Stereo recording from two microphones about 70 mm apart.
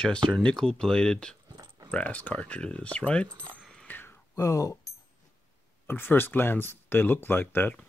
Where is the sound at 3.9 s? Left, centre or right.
Left.